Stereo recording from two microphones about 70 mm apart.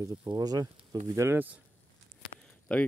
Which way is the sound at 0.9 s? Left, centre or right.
Right.